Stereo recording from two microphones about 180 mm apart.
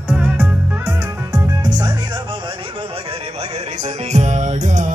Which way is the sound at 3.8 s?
40° right (ahead or behind).